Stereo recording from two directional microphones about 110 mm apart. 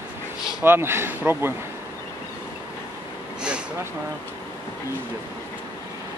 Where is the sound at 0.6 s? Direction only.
20° right (ahead or behind).